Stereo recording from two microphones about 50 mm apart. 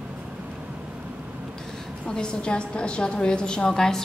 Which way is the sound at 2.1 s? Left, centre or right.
Centre.